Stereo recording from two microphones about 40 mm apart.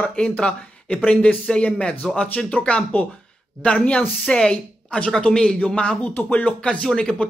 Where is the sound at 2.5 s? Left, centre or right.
Left.